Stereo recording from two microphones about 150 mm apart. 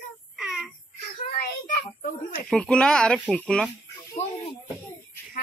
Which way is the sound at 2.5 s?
5° left (ahead or behind).